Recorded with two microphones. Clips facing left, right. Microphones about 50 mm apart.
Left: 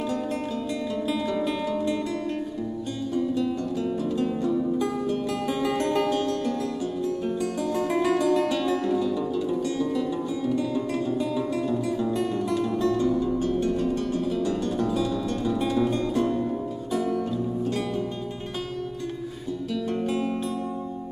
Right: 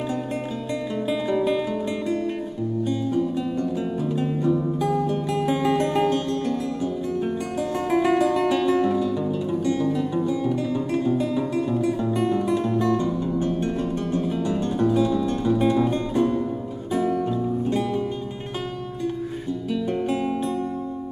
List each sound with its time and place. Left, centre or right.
1.0 s music: centre
3.1 s music: centre
19.7 s music: centre